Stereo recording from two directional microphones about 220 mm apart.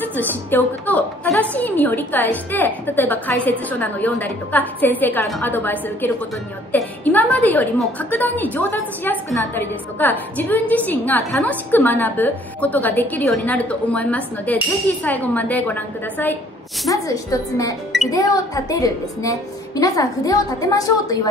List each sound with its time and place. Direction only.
0.0 s a woman's voice: 10° left (ahead or behind)